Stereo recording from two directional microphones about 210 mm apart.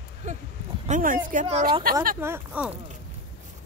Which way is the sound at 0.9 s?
40° right (ahead or behind).